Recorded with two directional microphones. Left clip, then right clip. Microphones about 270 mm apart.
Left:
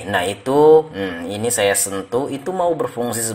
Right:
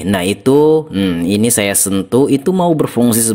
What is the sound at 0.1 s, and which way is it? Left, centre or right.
Speech, right.